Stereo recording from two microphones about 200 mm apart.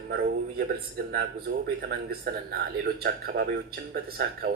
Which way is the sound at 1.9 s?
50° right (ahead or behind).